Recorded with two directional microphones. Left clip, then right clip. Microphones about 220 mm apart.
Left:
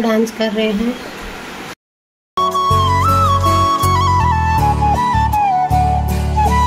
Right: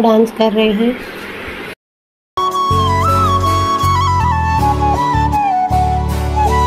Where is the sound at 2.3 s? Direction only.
Centre (ahead or behind).